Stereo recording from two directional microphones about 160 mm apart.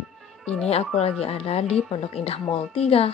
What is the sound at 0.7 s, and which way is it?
Speech, 40° left (ahead or behind).